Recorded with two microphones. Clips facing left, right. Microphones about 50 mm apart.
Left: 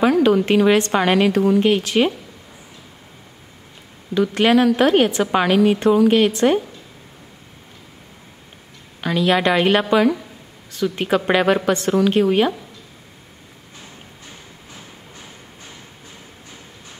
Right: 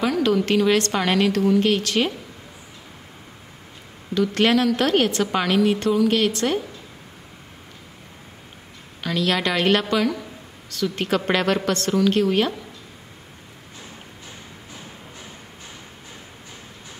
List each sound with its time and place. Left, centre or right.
0.0 s a woman's voice: centre
4.1 s a woman's voice: centre
9.0 s a woman's voice: centre